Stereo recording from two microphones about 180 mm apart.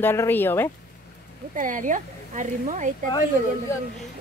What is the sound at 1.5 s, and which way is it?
Speech, 45° right (ahead or behind).